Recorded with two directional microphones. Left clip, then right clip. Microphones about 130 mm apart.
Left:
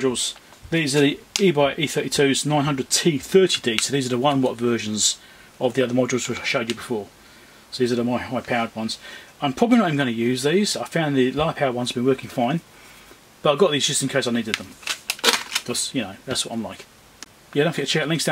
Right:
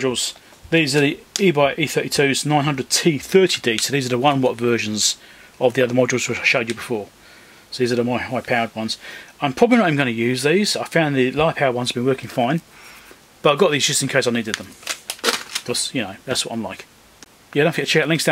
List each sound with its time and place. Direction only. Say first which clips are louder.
0.0 s speech: right 1 dB; 20° right (ahead or behind)
7.7 s speech: right 2 dB; 25° right (ahead or behind)
15.2 s a sound: left 1 dB; centre (ahead or behind)
15.6 s speech: right 3 dB; 25° right (ahead or behind)